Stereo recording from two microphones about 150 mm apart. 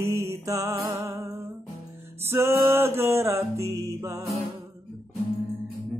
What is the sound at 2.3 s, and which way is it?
Music, 20° right (ahead or behind).